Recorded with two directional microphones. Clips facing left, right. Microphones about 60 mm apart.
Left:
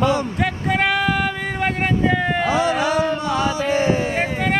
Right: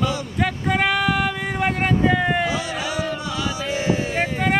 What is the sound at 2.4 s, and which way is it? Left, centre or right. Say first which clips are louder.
Music: left 6 dB; left.